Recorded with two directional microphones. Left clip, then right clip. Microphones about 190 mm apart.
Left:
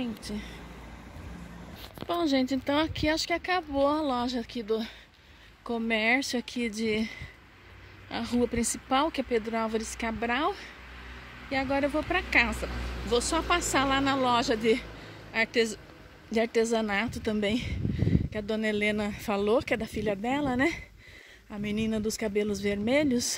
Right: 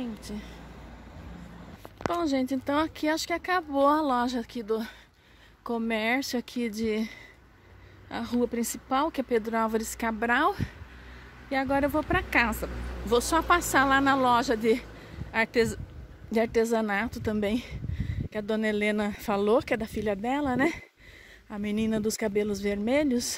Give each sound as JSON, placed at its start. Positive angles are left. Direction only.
{"t": 0.0, "sound": "speech", "side_deg": 0}
{"t": 2.1, "sound": "speech", "side_deg": 0}